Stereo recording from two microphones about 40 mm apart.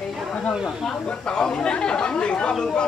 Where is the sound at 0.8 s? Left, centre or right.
Left.